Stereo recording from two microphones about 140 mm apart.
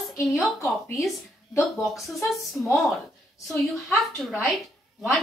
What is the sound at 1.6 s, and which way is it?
Speech, centre (ahead or behind).